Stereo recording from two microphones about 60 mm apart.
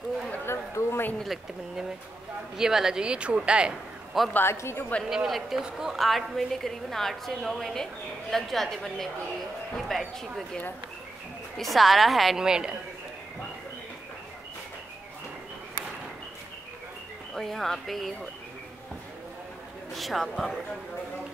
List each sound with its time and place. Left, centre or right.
0.5 s a sound: left
1.2 s a woman's voice: centre
4.1 s a woman's voice: centre
4.5 s a woman's voice: left
5.1 s a woman's voice: centre
11.5 s a woman's voice: centre
17.4 s a woman's voice: centre
19.9 s a woman's voice: centre